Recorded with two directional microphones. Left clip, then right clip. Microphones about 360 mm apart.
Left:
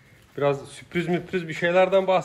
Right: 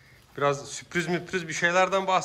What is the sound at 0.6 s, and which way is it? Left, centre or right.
A man's voice, centre.